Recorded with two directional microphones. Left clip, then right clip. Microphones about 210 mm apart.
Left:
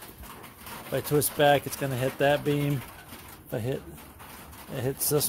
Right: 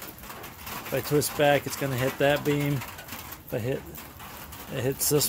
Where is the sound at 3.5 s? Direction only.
15° left (ahead or behind).